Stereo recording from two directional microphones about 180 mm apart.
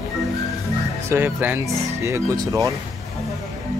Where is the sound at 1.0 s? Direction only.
10° right (ahead or behind).